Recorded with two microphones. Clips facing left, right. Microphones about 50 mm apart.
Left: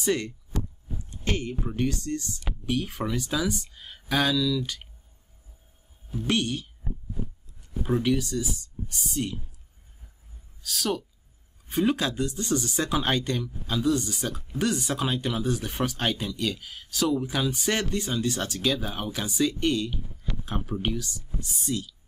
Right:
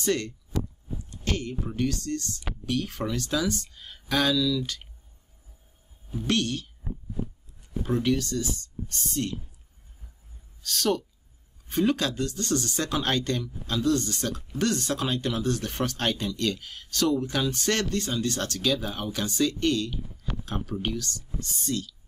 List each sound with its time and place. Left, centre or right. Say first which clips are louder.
0.0 s speech: even; centre
1.1 s a sound: left 1 dB; left
1.5 s speech: even; centre
6.2 s speech: even; centre
7.8 s speech: left 1 dB; centre
10.6 s speech: right 3 dB; centre